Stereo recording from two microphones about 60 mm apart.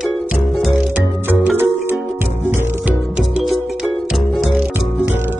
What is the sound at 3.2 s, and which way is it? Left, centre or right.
Music, centre.